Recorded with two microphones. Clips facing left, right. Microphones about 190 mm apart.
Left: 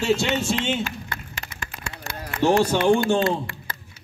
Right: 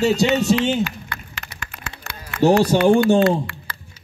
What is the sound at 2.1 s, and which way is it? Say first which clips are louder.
Run: left 5 dB; 40° left (ahead or behind).